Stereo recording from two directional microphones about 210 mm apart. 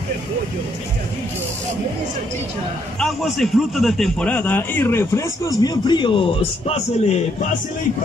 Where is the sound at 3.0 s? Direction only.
Centre (ahead or behind); by 7.2 s 30° left (ahead or behind).